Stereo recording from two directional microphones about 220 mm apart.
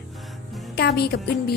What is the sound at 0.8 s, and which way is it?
Speech, 45° left (ahead or behind).